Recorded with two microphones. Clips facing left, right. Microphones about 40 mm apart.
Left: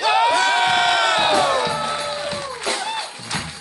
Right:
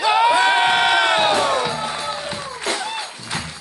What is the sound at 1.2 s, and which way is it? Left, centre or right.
Music, centre.